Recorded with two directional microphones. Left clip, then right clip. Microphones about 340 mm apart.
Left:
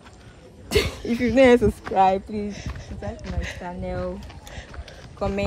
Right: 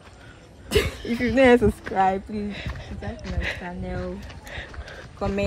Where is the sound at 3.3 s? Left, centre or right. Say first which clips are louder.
Right 4 dB; centre.